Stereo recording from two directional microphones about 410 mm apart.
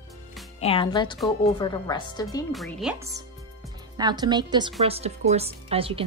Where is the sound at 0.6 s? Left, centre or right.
Centre.